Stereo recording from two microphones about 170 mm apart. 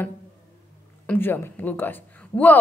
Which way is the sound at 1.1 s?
10° left (ahead or behind).